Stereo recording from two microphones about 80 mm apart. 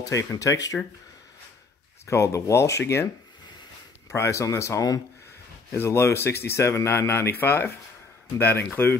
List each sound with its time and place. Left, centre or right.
0.0 s speech: left
2.0 s speech: left
4.1 s speech: left
5.8 s speech: left